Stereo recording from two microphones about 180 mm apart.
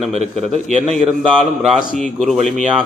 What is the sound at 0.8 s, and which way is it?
A man's voice, centre (ahead or behind).